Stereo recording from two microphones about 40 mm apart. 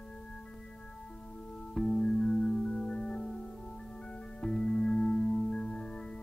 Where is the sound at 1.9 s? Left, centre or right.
Centre.